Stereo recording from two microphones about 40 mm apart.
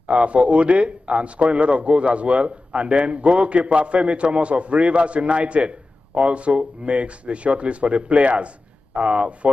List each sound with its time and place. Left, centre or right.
0.0 s a man's voice: right